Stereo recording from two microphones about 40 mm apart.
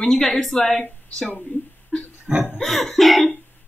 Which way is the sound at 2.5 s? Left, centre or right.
Centre.